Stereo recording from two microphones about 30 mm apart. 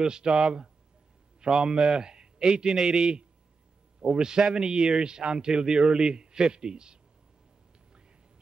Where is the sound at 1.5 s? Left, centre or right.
Centre.